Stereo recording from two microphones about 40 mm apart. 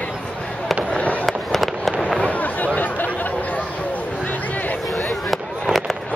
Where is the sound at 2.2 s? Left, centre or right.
Left.